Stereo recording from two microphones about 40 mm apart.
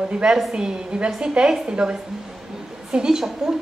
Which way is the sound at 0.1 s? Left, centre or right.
Right.